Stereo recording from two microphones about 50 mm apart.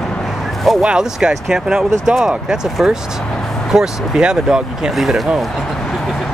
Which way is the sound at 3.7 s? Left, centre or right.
Centre.